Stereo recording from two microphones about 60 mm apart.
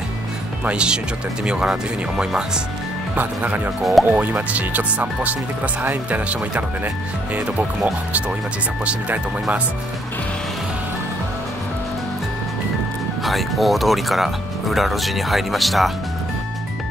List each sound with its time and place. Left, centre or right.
0.7 s speech: centre
3.2 s speech: right
13.2 s speech: centre